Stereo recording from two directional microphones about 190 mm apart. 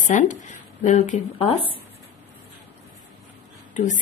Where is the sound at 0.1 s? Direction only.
40° left (ahead or behind).